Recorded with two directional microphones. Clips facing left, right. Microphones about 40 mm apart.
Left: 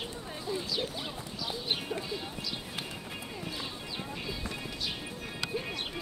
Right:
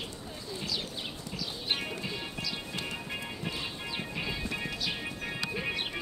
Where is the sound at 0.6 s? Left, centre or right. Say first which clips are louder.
Left 2 dB; centre.